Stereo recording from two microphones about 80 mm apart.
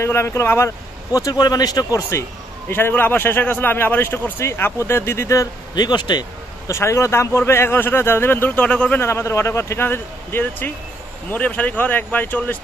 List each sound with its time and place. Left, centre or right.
0.0 s speech: left
1.1 s speech: left
2.0 s speech: left
2.7 s a man's voice: left
5.8 s speech: left
6.7 s a man's voice: left
8.5 s speech: centre
9.0 s a man's voice: left